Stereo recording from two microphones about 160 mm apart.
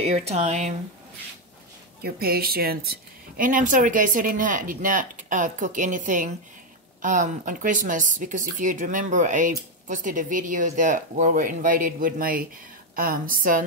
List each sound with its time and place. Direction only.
0.0 s speech: 45° right (ahead or behind)
2.0 s speech: 70° right (ahead or behind)